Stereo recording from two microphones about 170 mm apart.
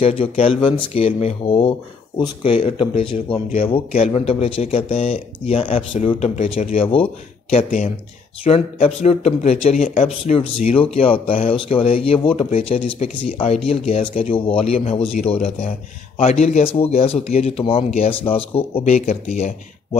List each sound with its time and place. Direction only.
0.0 s speech: 35° left (ahead or behind)
7.5 s speech: 45° left (ahead or behind)